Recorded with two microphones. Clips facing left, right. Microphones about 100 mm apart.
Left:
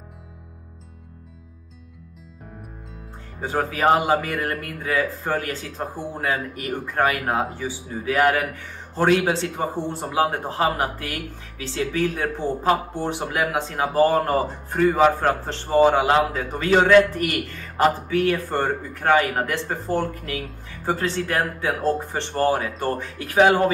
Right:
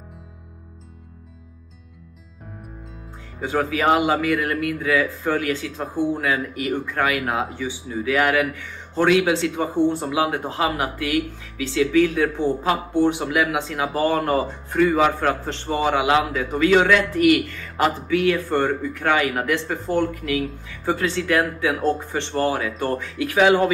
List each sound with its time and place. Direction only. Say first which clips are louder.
3.3 s speech: right 2 dB; 40° left (ahead or behind)